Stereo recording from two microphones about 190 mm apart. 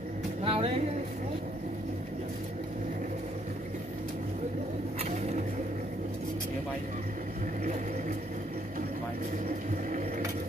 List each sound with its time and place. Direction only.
0.4 s music: 30° right (ahead or behind)